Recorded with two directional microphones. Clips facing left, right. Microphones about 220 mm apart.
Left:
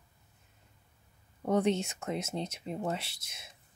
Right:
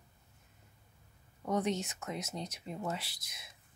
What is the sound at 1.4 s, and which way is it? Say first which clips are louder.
Speech: left 5 dB; 30° left (ahead or behind).